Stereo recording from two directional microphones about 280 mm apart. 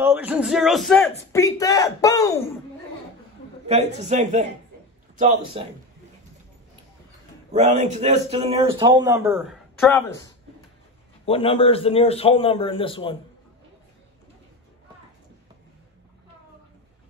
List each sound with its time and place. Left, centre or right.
0.0 s a man's voice: centre
3.6 s a man's voice: right
7.5 s a man's voice: right; by 10.3 s centre
11.2 s a man's voice: centre